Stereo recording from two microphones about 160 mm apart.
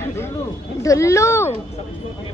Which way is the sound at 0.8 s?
20° left (ahead or behind).